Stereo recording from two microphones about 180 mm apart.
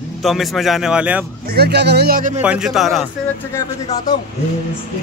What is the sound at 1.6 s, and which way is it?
Speech, 65° right (ahead or behind).